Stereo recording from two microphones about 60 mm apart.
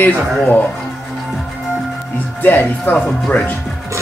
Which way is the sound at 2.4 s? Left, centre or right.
Left.